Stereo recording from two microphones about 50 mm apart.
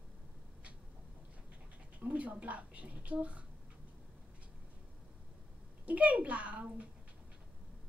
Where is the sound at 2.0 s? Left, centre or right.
Right.